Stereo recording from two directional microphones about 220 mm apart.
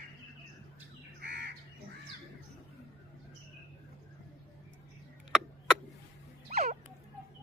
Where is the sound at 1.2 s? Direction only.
50° right (ahead or behind).